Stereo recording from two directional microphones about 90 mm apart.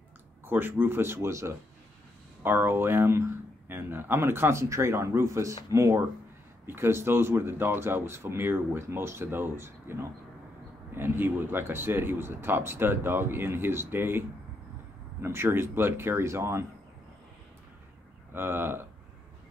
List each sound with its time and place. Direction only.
0.5 s speech: 25° right (ahead or behind)
18.3 s speech: 25° right (ahead or behind)